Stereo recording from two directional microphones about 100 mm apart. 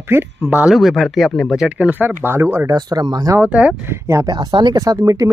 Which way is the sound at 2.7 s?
40° right (ahead or behind).